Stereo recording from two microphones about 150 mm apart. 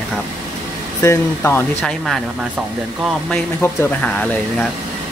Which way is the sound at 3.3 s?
10° left (ahead or behind).